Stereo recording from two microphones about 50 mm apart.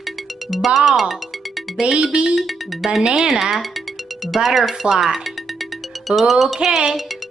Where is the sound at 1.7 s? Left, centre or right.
Centre.